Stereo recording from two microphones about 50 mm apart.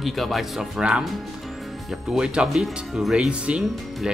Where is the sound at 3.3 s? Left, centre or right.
Right.